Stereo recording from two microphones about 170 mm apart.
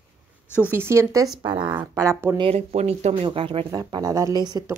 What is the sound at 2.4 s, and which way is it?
Speech, 40° right (ahead or behind).